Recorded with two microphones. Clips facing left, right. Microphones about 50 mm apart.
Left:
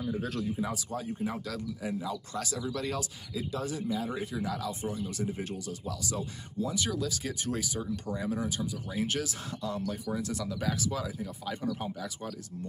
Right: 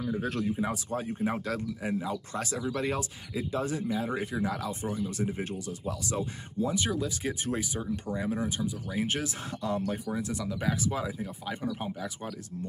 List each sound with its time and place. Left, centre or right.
0.0 s speech: right
0.6 s speech: right
10.1 s speech: centre